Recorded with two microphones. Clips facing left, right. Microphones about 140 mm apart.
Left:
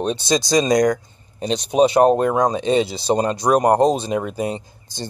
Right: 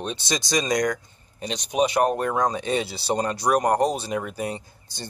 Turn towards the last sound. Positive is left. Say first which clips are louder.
# left 7 dB
turn(degrees=20)  # may be behind; listen again after turning